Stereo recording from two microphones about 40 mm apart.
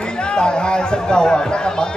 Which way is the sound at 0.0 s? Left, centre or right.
Left.